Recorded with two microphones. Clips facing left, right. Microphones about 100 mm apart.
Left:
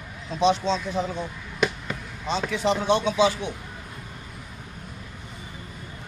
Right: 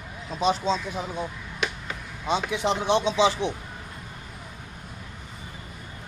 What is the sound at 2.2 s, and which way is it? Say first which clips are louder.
Speech: left 1 dB; 15° right (ahead or behind).